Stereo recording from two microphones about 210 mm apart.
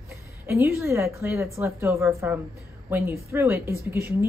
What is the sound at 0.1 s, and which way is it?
Speech, 15° right (ahead or behind).